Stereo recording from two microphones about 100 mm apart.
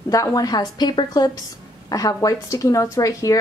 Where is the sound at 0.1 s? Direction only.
35° left (ahead or behind).